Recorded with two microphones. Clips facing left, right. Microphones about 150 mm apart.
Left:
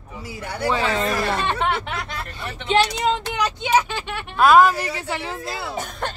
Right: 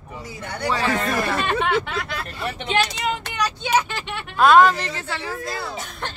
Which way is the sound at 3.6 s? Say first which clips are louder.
Left 2 dB; 15° left (ahead or behind).